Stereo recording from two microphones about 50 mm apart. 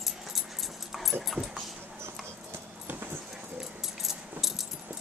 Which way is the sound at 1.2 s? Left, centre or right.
Centre.